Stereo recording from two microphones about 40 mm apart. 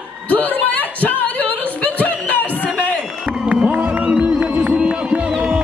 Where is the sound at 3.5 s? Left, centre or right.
Right.